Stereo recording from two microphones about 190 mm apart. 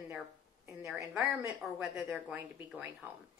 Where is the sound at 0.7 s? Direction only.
10° right (ahead or behind).